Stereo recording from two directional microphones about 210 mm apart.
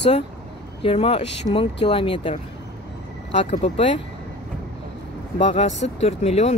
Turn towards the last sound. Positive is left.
turn(degrees=30)  # may be behind; listen again after turning